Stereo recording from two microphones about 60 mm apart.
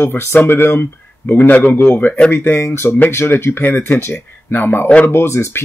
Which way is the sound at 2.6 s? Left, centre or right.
Left.